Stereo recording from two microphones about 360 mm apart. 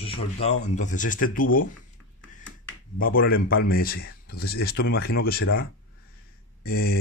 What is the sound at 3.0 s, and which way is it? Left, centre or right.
Speech, left.